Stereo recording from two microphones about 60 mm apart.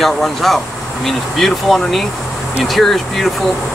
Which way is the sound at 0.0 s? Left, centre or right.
Centre.